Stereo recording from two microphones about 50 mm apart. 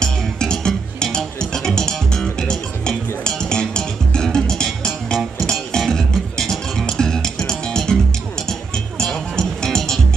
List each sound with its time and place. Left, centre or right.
0.0 s music: centre